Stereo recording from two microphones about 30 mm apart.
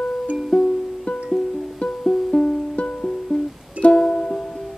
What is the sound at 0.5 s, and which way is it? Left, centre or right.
Music, left.